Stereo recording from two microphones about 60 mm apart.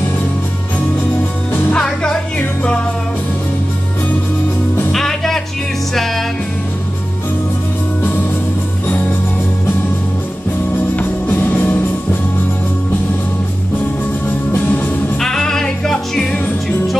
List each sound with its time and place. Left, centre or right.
1.5 s music: left
2.3 s music: centre
4.9 s music: centre
8.8 s music: left
11.0 s music: left
14.2 s music: left
15.1 s music: centre